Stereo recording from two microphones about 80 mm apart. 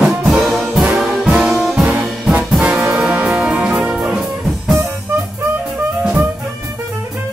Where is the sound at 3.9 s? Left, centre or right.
Centre.